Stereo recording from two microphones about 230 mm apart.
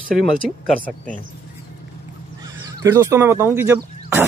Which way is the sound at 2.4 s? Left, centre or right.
Centre.